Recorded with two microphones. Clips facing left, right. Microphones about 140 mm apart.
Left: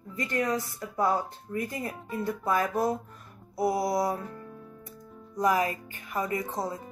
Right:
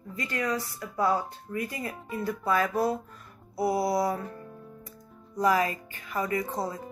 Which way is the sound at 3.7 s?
20° left (ahead or behind).